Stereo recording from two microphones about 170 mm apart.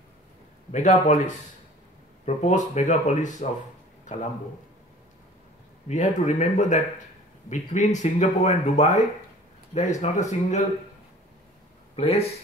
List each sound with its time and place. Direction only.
0.7 s a man's voice: 45° left (ahead or behind)
5.9 s speech: 45° left (ahead or behind)
11.9 s speech: 35° left (ahead or behind)